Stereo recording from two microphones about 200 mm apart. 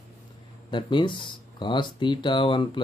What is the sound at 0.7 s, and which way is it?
Mantra, 25° left (ahead or behind).